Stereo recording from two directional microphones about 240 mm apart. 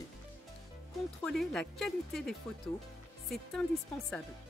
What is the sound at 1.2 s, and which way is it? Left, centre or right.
Speech, centre.